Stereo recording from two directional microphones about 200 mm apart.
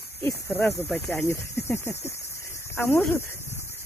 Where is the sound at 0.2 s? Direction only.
15° left (ahead or behind).